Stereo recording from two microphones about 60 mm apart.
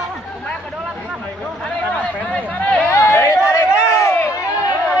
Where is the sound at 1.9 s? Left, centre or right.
Left.